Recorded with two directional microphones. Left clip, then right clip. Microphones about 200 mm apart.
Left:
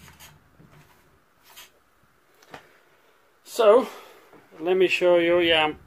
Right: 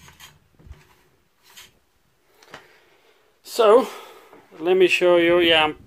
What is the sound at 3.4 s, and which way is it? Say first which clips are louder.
Speech: right 2 dB; 25° right (ahead or behind).